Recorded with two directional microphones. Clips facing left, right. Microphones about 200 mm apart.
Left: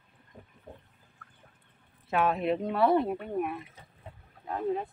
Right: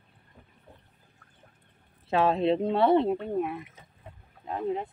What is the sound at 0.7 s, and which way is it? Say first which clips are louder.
Water: left 7 dB; 45° left (ahead or behind).